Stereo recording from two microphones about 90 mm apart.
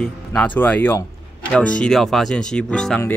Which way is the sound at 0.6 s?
20° left (ahead or behind).